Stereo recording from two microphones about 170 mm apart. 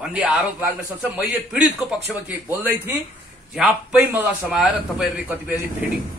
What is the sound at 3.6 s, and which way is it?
A man's voice, 5° right (ahead or behind).